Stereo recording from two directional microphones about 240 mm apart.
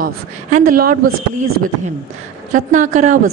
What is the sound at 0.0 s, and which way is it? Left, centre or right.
Speech, right.